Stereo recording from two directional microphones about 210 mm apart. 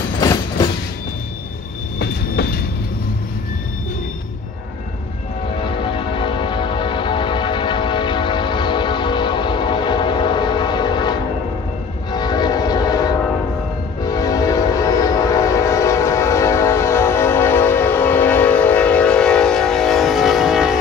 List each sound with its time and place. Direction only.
0.2 s train: 20° left (ahead or behind)
2.0 s train: 50° left (ahead or behind)
5.6 s train: 25° left (ahead or behind); by 20.7 s centre (ahead or behind)